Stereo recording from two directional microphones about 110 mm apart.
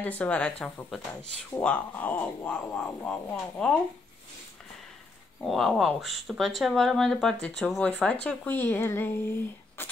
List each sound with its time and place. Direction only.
0.0 s speech: 15° left (ahead or behind)
5.4 s speech: centre (ahead or behind); by 9.1 s 20° left (ahead or behind)
9.8 s a sound: 20° left (ahead or behind)